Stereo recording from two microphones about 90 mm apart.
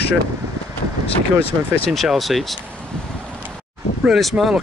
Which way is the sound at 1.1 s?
90° left.